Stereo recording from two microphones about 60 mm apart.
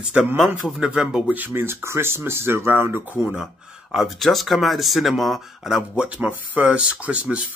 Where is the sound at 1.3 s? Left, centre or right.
Right.